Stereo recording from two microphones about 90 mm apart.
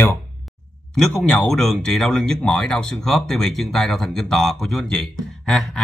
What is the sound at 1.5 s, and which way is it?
Speech, 5° left (ahead or behind).